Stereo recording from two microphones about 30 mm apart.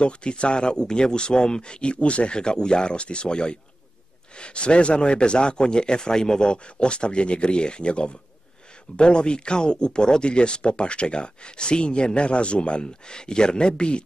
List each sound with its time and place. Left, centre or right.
0.0 s speech: left
2.3 s speech: left
13.1 s speech: left